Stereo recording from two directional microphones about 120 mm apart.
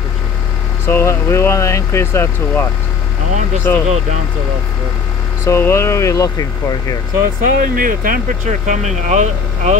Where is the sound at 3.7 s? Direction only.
20° left (ahead or behind).